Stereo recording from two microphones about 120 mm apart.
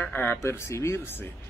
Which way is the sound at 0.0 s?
15° left (ahead or behind).